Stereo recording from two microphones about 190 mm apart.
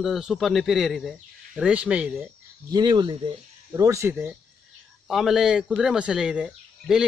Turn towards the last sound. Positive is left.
turn(degrees=-5)  # may be behind; listen again after turning